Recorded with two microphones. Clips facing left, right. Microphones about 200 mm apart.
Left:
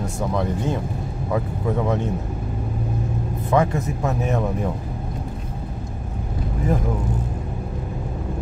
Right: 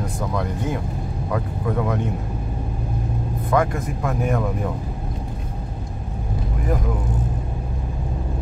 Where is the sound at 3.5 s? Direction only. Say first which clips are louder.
Left 1 dB; 25° left (ahead or behind).